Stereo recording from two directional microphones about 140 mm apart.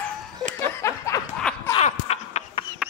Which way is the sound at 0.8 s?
20° left (ahead or behind).